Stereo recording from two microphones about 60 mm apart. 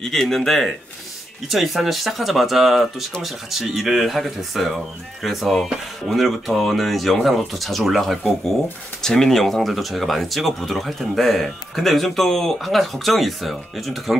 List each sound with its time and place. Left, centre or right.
0.0 s speech: centre